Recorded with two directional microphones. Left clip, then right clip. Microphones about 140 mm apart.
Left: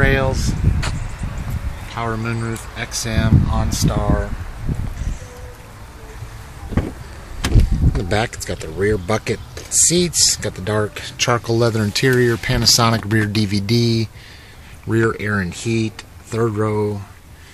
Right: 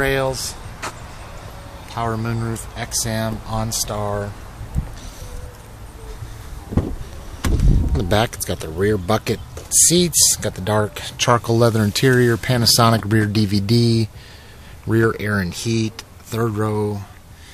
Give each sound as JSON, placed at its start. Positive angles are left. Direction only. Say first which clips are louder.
{"t": 0.0, "sound": "speech", "louder": "left 1 dB", "side_deg": -5}
{"t": 1.9, "sound": "speech", "louder": "even", "side_deg": -15}
{"t": 7.4, "sound": "vehicle", "louder": "left 2 dB", "side_deg": -20}
{"t": 8.7, "sound": "speech", "louder": "even", "side_deg": -10}